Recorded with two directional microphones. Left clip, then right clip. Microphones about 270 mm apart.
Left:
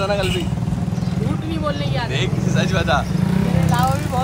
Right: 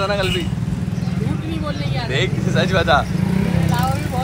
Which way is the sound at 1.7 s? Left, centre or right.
Centre.